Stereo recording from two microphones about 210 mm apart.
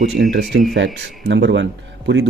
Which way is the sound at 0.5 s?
60° right (ahead or behind).